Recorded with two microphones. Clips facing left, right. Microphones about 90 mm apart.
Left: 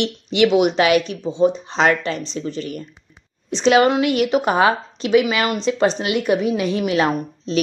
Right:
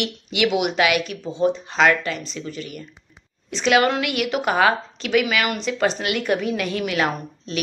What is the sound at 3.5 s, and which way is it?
Speech, 25° left (ahead or behind).